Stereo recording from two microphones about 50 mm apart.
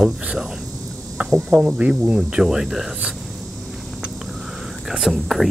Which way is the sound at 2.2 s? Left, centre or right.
Centre.